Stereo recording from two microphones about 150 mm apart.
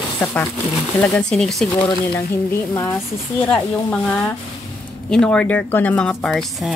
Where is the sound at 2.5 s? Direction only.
15° left (ahead or behind).